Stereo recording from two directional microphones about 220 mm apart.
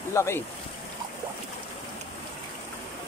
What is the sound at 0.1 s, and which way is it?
Speech, 10° left (ahead or behind).